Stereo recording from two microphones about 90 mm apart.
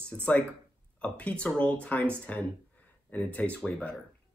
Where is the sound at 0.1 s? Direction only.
15° left (ahead or behind).